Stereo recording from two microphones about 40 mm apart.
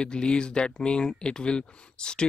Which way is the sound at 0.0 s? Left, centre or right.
Left.